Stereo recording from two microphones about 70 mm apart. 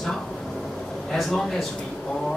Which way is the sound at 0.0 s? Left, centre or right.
Centre.